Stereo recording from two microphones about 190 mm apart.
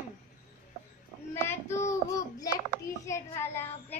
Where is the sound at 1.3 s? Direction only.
10° left (ahead or behind).